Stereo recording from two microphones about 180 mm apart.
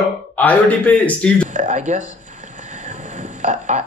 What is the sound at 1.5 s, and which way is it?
Speech, 45° right (ahead or behind).